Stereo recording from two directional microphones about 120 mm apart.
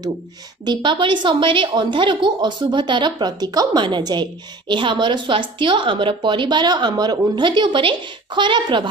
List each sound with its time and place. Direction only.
0.7 s a woman's voice: 40° right (ahead or behind)